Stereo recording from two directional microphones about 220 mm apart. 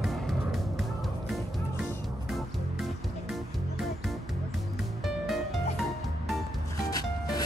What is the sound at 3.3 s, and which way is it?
Music, centre (ahead or behind).